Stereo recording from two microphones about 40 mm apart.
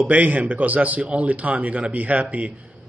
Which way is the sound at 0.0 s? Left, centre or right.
Right.